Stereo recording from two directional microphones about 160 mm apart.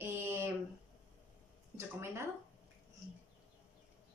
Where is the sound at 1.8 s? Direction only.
15° right (ahead or behind).